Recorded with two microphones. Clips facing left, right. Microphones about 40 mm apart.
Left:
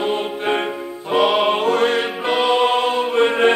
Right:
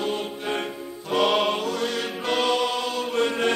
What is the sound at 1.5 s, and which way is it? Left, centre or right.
Music, left.